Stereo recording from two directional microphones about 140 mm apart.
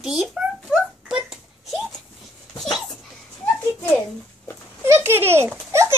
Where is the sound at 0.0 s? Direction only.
Centre (ahead or behind).